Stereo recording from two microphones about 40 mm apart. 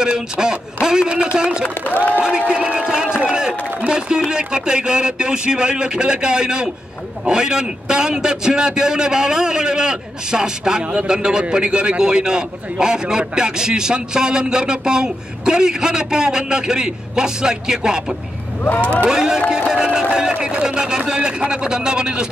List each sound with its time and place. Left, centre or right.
0.0 s a man's voice: centre
1.9 s speech: left
2.2 s a man's voice: centre
3.3 s a sound: centre
3.9 s a man's voice: centre
19.7 s music: centre
20.3 s a man's voice: right